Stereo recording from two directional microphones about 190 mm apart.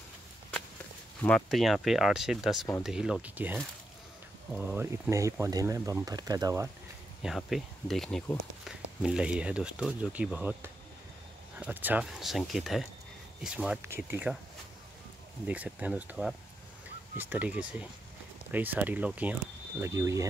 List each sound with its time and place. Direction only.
1.2 s speech: centre (ahead or behind)
4.6 s speech: 10° right (ahead or behind)
7.2 s speech: centre (ahead or behind)
15.4 s speech: 5° right (ahead or behind)